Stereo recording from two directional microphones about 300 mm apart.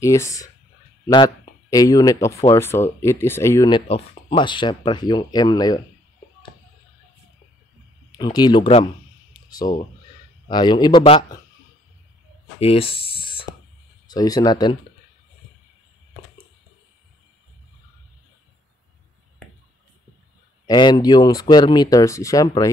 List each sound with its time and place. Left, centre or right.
0.0 s speech: centre
8.2 s speech: centre
12.5 s a sound: centre
14.0 s speech: centre
20.6 s speech: centre